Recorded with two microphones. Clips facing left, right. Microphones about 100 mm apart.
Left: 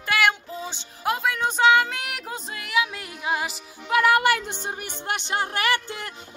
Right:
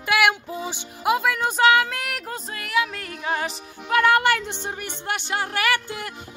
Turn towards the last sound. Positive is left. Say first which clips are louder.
# right 1 dB
turn(degrees=30)  # may be behind; listen again after turning